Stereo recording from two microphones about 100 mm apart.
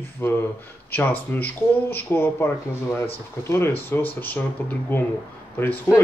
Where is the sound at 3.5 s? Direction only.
25° left (ahead or behind).